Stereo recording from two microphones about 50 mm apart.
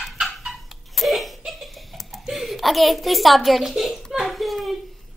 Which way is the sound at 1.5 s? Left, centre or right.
Centre.